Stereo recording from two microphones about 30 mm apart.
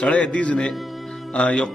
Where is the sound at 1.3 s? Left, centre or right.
Left.